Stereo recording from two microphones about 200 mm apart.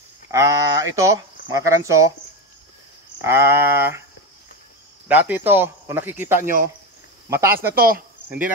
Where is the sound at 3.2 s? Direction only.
10° right (ahead or behind).